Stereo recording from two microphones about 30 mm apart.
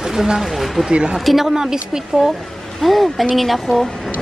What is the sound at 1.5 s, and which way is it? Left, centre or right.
Speech, right.